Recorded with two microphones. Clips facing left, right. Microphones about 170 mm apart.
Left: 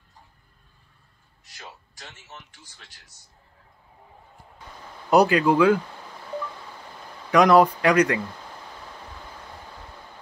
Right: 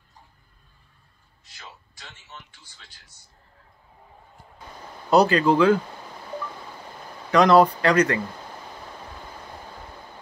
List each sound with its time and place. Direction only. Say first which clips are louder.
2.0 s speech: left 1 dB; 40° left (ahead or behind)
5.1 s speech: even; 10° left (ahead or behind)
7.2 s speech: even; 10° left (ahead or behind)